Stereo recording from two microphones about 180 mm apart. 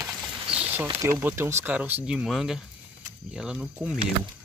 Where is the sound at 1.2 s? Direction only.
15° right (ahead or behind).